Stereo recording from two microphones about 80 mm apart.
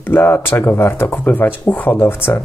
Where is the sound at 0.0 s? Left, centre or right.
Left.